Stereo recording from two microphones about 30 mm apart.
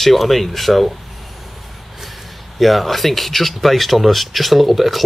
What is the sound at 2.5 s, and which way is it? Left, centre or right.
Speech, centre.